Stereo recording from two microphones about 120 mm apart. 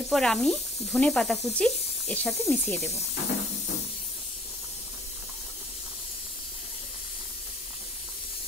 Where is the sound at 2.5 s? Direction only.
15° left (ahead or behind).